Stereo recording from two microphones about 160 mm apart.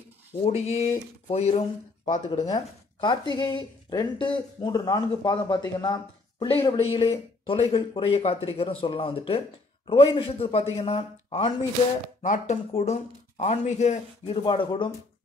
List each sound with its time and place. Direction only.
0.4 s speech: 40° left (ahead or behind)
2.2 s speech: 25° left (ahead or behind)
12.2 s speech: 50° left (ahead or behind); by 14.9 s 30° left (ahead or behind)